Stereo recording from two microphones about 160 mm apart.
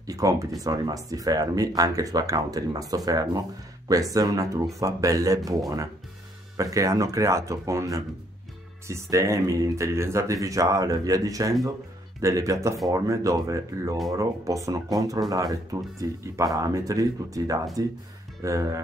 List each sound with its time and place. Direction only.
0.0 s speech: 20° right (ahead or behind)